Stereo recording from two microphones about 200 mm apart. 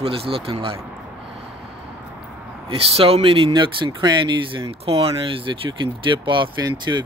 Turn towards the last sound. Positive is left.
turn(degrees=-20)  # may be behind; listen again after turning